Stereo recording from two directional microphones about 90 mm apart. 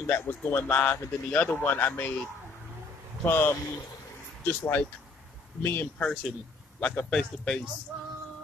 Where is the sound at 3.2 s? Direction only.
25° left (ahead or behind).